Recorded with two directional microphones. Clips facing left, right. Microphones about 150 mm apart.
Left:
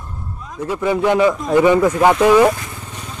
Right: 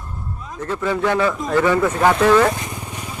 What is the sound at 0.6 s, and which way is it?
Speech, 15° left (ahead or behind).